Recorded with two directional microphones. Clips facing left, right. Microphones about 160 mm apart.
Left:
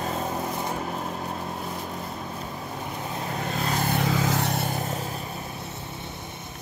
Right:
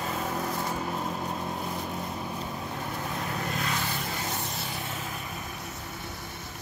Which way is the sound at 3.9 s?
85° left.